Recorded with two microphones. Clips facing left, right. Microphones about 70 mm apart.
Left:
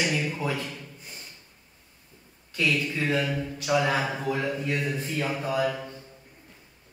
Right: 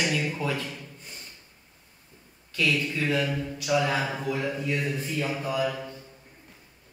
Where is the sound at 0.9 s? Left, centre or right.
Centre.